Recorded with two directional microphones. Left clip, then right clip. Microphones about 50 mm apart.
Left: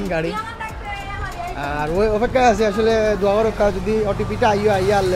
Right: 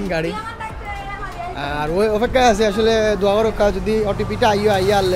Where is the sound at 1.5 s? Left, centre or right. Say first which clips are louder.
Right 1 dB; right.